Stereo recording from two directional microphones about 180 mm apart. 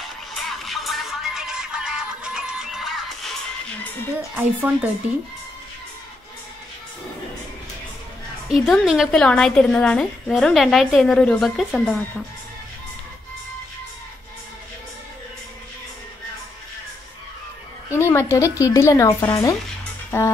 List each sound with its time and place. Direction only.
0.0 s music: centre (ahead or behind)
4.4 s speech: 10° right (ahead or behind)
8.6 s a woman's voice: centre (ahead or behind)
17.9 s a woman's voice: 15° left (ahead or behind)
20.1 s music: 15° left (ahead or behind)